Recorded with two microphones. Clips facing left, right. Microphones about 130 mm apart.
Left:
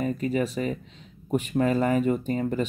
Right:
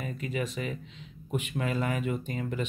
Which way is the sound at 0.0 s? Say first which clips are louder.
Left 8 dB; 40° left (ahead or behind).